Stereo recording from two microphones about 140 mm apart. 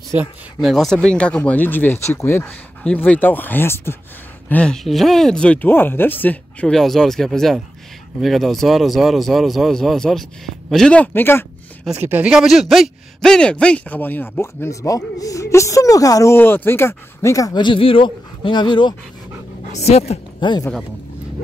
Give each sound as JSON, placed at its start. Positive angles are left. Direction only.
{"t": 0.6, "sound": "speech", "side_deg": 0}
{"t": 11.9, "sound": "speech", "side_deg": -15}
{"t": 19.7, "sound": "a woman's voice", "side_deg": 50}
{"t": 20.3, "sound": "speech", "side_deg": 35}